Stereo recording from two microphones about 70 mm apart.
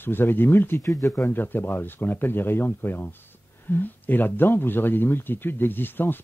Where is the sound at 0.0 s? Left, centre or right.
Left.